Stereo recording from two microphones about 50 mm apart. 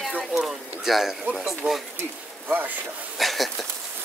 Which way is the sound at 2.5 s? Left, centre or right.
Right.